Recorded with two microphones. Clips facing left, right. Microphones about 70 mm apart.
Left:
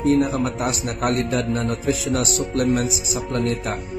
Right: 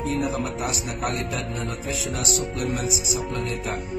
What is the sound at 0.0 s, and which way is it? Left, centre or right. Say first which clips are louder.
Music: left 7 dB; left.